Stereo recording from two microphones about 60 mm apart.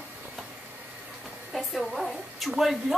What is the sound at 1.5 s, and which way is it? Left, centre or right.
A woman's voice, centre.